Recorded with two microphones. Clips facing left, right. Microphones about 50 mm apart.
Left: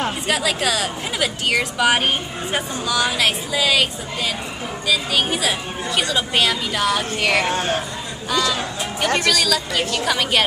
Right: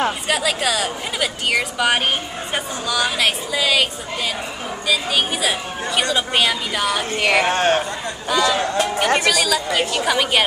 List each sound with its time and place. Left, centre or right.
0.3 s speech: centre
7.5 s speech: right
8.3 s a woman's voice: centre